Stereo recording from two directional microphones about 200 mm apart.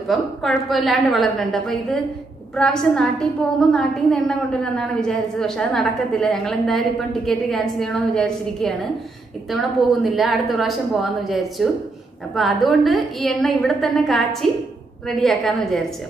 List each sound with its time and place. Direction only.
0.1 s a woman's voice: centre (ahead or behind)